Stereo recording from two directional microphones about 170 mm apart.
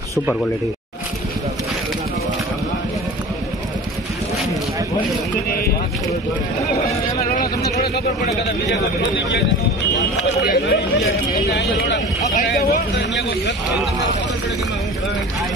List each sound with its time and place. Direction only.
7.3 s speech: 60° left (ahead or behind)
8.6 s a man's voice: 85° left
10.4 s speech: 70° left (ahead or behind)
12.9 s a man's voice: 90° left